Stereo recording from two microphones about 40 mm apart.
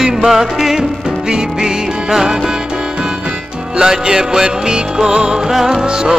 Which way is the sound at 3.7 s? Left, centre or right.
Centre.